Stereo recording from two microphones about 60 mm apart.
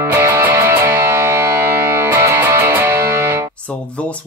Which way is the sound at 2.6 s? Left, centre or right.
Right.